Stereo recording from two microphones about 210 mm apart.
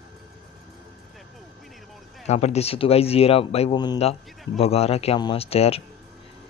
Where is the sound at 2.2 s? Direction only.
30° left (ahead or behind).